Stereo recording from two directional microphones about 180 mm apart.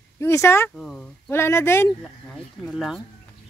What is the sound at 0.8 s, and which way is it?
Speech, 5° left (ahead or behind).